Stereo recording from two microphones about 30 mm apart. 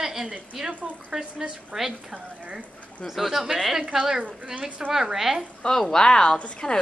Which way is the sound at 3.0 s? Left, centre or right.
Centre.